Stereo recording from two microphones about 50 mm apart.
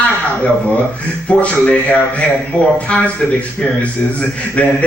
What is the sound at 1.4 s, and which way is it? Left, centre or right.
Speech, left.